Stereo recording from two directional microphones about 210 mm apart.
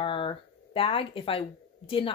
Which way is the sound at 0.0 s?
25° left (ahead or behind).